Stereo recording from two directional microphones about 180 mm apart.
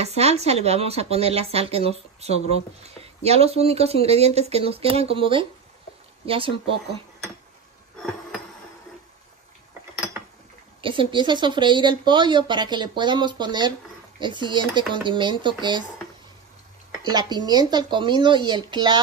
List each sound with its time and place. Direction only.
0.0 s speech: 35° right (ahead or behind)
8.0 s music: 5° left (ahead or behind)
10.8 s a woman's voice: 30° right (ahead or behind)
17.0 s a woman's voice: 25° right (ahead or behind)